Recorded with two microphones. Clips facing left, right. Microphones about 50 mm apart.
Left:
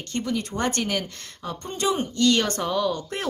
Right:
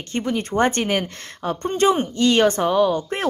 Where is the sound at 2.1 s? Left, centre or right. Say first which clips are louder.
Right 5 dB; right.